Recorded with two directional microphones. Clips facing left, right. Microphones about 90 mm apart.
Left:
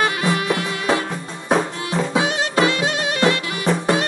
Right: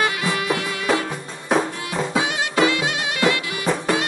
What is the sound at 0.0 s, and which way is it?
Music, 35° left (ahead or behind).